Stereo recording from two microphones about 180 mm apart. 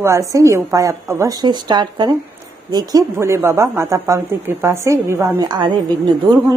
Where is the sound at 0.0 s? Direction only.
15° right (ahead or behind).